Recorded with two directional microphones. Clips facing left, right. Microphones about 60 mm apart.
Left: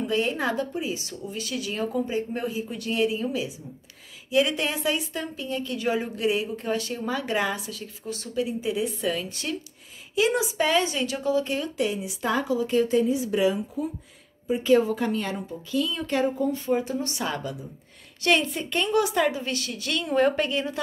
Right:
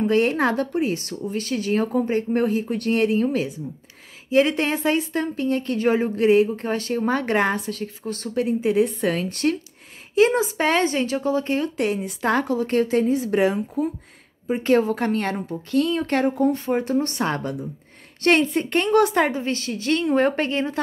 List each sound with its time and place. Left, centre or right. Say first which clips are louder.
0.0 s a woman's voice: right 6 dB; right
10.1 s a woman's voice: right 5 dB; right